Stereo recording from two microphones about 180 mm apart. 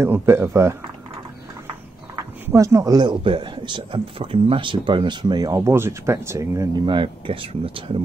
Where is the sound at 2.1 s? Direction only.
15° right (ahead or behind).